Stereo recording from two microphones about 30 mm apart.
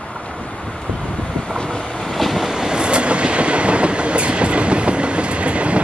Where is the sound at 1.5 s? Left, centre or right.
Left.